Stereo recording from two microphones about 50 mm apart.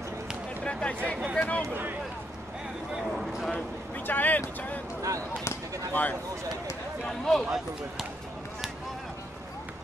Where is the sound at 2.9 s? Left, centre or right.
Centre.